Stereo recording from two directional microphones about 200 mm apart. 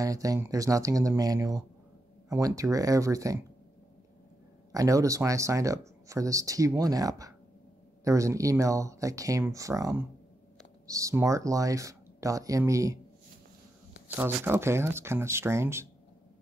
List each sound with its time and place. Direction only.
0.0 s speech: 15° right (ahead or behind)
4.7 s speech: 15° right (ahead or behind)
14.1 s speech: 10° right (ahead or behind)